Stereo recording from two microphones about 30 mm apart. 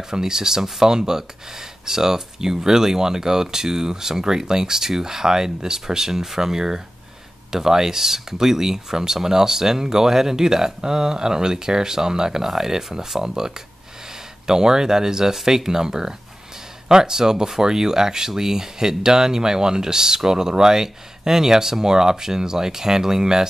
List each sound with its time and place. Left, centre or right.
0.1 s speech: centre